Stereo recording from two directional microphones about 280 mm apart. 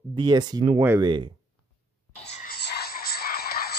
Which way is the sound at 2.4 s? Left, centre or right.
Left.